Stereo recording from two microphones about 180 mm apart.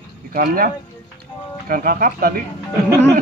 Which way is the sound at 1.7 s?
55° right (ahead or behind).